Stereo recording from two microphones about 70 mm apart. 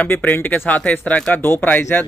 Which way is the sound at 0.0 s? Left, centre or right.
Left.